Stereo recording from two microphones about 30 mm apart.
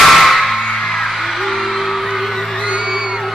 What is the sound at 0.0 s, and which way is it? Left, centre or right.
Music, centre.